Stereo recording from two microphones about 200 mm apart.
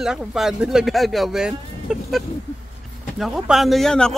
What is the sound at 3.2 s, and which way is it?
Speech, centre (ahead or behind).